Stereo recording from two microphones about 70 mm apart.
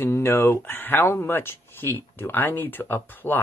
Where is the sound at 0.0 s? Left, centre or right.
Left.